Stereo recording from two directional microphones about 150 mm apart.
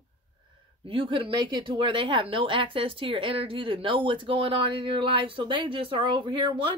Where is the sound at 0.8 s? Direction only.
35° right (ahead or behind).